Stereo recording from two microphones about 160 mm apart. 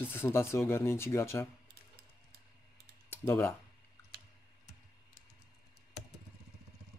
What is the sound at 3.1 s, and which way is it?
Speech, 15° left (ahead or behind).